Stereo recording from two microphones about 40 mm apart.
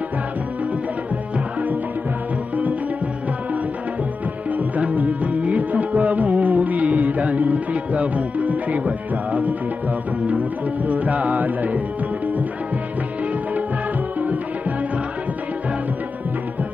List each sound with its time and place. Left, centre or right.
4.5 s music: right
10.9 s music: right